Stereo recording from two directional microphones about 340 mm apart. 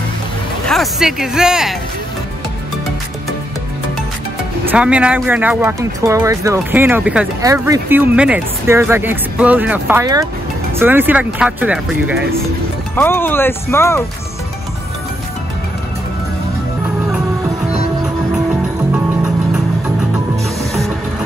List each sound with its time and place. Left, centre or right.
0.7 s speech: centre
4.6 s speech: centre
12.9 s speech: centre
20.4 s music: centre